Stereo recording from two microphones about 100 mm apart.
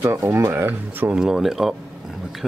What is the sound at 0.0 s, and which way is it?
Speech, 30° right (ahead or behind).